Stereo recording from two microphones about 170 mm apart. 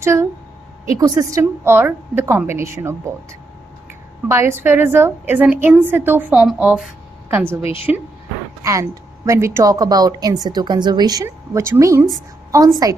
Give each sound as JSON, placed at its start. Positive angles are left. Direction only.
{"t": 0.0, "sound": "a woman's voice", "side_deg": -15}
{"t": 4.3, "sound": "a woman's voice", "side_deg": -15}